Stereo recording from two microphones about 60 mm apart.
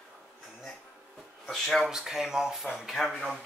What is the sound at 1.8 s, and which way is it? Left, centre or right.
Speech, centre.